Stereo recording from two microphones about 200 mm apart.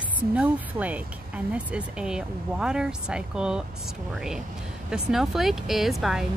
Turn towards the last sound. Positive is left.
turn(degrees=0)  # may be behind; listen again after turning